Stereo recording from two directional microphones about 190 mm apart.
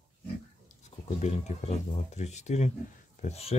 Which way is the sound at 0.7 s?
40° left (ahead or behind).